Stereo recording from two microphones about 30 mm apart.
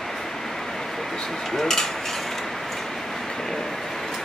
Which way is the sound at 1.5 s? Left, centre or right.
Centre.